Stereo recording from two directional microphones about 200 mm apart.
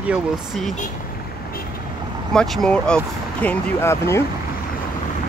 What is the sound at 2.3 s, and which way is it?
Speech, 5° left (ahead or behind).